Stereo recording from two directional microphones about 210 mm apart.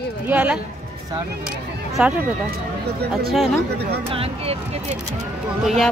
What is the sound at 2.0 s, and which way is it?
Speech, 5° right (ahead or behind).